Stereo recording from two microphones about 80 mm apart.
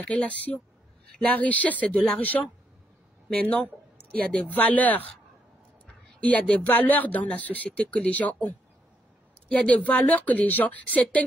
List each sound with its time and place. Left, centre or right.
0.0 s speech: centre
3.4 s a woman's voice: centre
6.2 s speech: centre